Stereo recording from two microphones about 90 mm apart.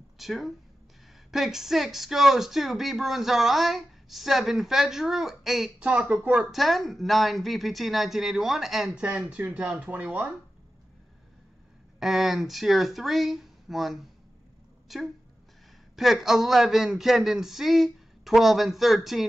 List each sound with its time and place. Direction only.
0.2 s speech: centre (ahead or behind)
5.8 s speech: 15° right (ahead or behind)
9.0 s speech: 15° right (ahead or behind)
12.0 s speech: centre (ahead or behind)